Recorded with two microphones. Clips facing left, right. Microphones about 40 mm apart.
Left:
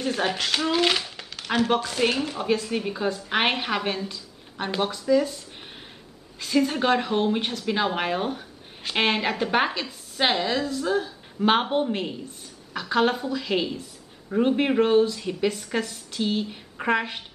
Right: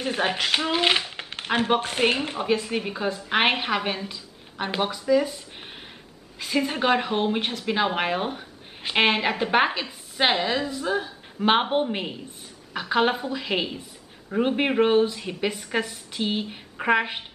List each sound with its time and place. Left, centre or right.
0.0 s speech: right
2.3 s speech: centre
6.4 s a woman's voice: centre